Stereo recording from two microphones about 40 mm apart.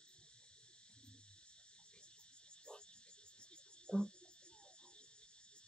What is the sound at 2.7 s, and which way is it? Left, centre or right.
Frog, left.